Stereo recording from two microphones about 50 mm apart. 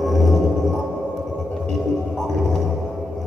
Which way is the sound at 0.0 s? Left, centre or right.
Centre.